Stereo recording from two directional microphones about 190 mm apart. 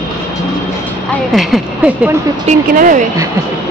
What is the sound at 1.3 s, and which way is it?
Speech, centre (ahead or behind).